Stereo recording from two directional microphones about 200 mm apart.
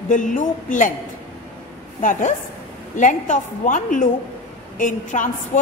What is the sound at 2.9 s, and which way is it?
A woman's voice, 40° left (ahead or behind).